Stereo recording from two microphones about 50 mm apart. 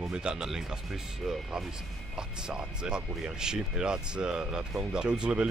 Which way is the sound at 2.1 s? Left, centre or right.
Centre.